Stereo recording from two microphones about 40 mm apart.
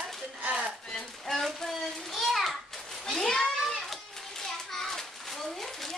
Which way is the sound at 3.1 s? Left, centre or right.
Centre.